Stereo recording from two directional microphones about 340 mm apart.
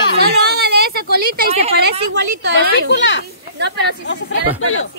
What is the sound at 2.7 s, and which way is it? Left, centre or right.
Speech, left.